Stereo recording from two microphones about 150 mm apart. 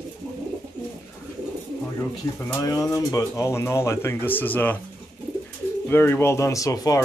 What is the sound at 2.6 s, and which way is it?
Speech, 20° left (ahead or behind).